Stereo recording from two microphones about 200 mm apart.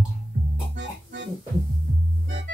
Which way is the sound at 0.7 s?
60° right (ahead or behind).